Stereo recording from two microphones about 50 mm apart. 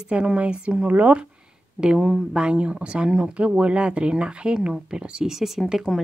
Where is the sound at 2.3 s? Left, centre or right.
Right; by 6.0 s centre.